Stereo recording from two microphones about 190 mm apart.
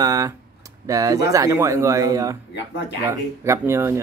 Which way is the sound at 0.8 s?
20° right (ahead or behind).